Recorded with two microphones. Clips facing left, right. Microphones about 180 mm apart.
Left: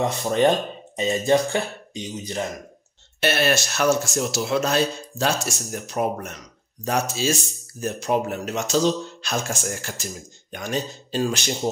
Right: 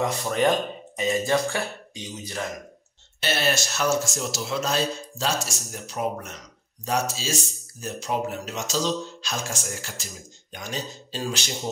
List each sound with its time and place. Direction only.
0.0 s speech: 25° left (ahead or behind)
3.2 s speech: 60° left (ahead or behind)